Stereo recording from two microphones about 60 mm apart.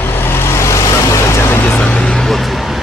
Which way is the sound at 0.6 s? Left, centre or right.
Left.